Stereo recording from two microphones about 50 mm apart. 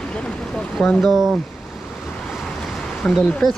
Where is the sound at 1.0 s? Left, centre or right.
Centre.